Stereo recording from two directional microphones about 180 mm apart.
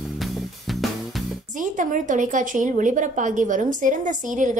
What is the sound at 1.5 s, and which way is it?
A woman's voice, 45° right (ahead or behind).